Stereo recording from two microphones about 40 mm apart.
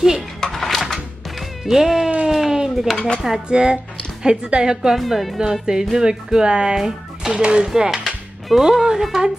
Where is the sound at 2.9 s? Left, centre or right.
Left.